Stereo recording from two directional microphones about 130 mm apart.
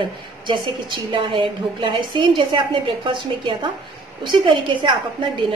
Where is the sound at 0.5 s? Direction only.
40° right (ahead or behind).